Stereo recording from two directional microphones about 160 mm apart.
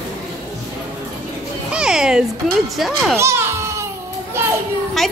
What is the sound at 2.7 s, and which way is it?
Speech, centre (ahead or behind).